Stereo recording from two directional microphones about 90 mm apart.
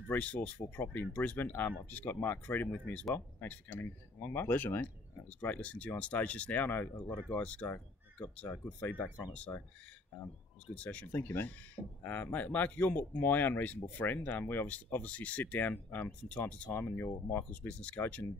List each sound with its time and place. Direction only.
0.1 s speech: 15° left (ahead or behind)
10.7 s speech: 15° left (ahead or behind)